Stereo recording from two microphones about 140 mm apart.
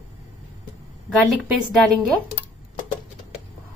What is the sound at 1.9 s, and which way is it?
Speech, centre (ahead or behind).